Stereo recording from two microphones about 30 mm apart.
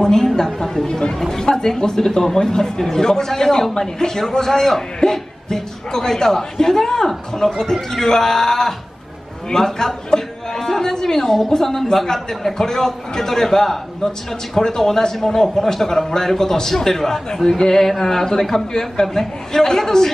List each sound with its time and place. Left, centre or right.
0.0 s a woman's voice: centre
2.0 s a man's voice: centre